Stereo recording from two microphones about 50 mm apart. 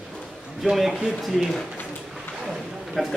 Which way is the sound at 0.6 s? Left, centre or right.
Centre.